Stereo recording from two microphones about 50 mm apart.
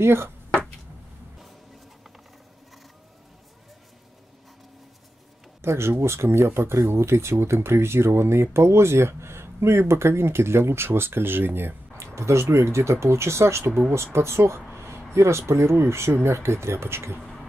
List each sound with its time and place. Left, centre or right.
0.0 s speech: right
5.6 s speech: right
12.2 s speech: right
14.7 s a sound: right
15.1 s speech: right